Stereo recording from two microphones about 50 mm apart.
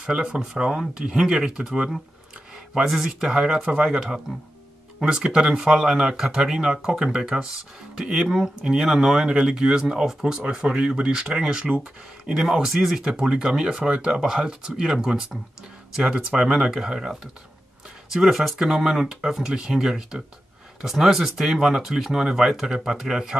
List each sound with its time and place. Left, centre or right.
0.0 s speech: centre
13.0 s speech: centre